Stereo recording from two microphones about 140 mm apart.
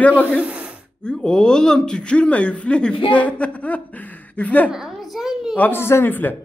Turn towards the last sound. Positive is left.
turn(degrees=15)  # may be behind; listen again after turning